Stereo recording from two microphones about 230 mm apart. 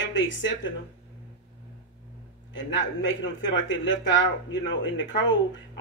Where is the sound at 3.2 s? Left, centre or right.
Left.